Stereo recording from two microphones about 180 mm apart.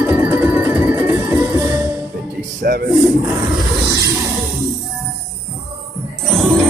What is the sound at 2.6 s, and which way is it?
Speech, 55° right (ahead or behind).